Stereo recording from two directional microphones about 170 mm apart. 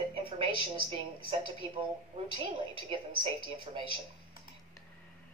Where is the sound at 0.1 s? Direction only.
30° right (ahead or behind).